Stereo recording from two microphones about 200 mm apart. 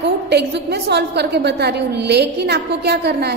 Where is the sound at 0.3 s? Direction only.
55° right (ahead or behind).